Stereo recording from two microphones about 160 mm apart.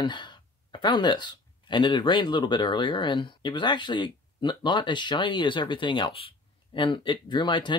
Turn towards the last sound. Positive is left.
turn(degrees=30)  # may be behind; listen again after turning